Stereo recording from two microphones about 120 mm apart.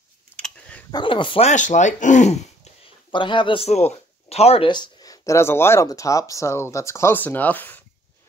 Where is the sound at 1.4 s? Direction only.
90° left.